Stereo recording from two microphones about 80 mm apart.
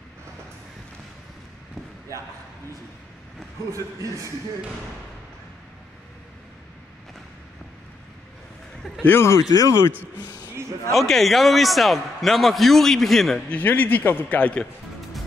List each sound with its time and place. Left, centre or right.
3.7 s a man's voice: right
9.0 s speech: left
9.4 s speech: left
10.4 s a sound: right
10.9 s a man's voice: centre
13.5 s a man's voice: left